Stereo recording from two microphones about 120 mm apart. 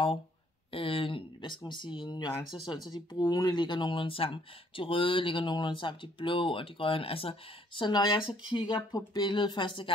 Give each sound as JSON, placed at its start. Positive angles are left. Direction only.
{"t": 0.7, "sound": "speech", "side_deg": 50}